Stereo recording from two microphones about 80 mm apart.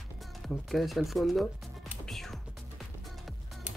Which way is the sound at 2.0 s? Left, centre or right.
Centre.